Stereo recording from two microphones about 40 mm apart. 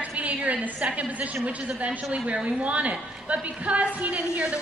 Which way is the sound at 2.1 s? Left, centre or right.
Right.